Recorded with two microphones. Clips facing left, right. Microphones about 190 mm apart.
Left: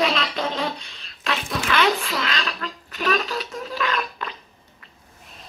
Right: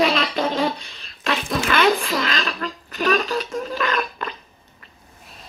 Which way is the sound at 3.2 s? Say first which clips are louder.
Right 4 dB; 5° left (ahead or behind).